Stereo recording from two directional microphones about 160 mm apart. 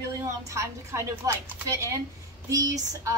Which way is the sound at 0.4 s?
20° right (ahead or behind).